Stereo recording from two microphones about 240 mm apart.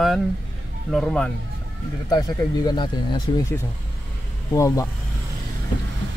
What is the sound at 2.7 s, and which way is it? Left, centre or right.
Speech, centre.